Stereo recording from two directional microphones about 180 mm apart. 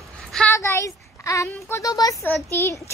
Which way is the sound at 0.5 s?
15° left (ahead or behind).